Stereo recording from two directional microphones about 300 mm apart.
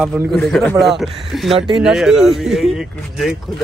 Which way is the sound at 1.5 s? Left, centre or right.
Centre.